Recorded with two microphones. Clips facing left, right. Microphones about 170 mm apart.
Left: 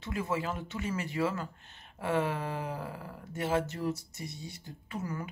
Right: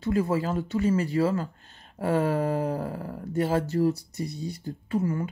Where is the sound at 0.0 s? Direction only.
35° right (ahead or behind).